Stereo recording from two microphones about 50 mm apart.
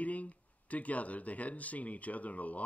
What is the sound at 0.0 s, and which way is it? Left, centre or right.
Speech, left.